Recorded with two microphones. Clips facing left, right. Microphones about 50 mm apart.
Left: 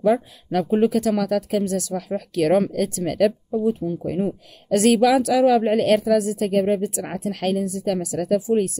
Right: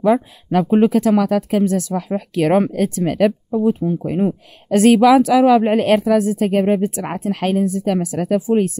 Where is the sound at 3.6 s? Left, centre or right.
Right.